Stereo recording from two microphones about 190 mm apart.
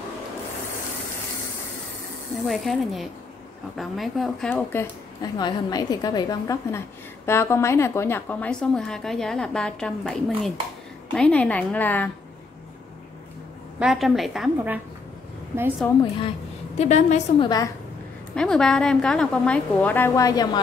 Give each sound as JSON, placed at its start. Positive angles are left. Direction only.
{"t": 2.4, "sound": "a woman's voice", "side_deg": 0}
{"t": 5.2, "sound": "a woman's voice", "side_deg": 20}
{"t": 13.7, "sound": "a woman's voice", "side_deg": 0}
{"t": 15.8, "sound": "a woman's voice", "side_deg": 10}
{"t": 16.7, "sound": "a woman's voice", "side_deg": 35}
{"t": 17.4, "sound": "a woman's voice", "side_deg": 20}
{"t": 18.3, "sound": "a woman's voice", "side_deg": 5}